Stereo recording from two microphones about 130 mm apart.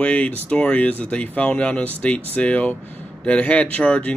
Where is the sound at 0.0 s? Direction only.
10° left (ahead or behind).